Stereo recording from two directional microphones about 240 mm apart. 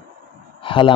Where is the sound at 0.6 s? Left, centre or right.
Left.